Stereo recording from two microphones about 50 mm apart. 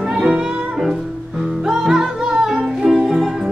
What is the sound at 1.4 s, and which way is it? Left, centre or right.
Music, centre.